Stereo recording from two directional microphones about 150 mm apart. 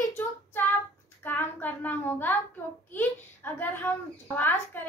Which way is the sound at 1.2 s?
15° left (ahead or behind).